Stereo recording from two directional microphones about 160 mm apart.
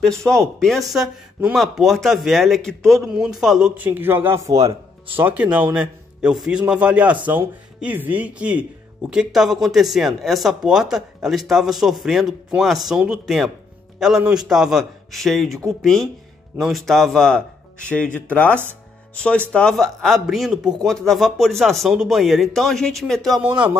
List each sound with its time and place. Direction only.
0.0 s speech: 5° left (ahead or behind); by 4.6 s 15° right (ahead or behind)
4.6 s speech: 25° right (ahead or behind)
5.3 s speech: 10° right (ahead or behind)
23.4 s speech: 10° right (ahead or behind)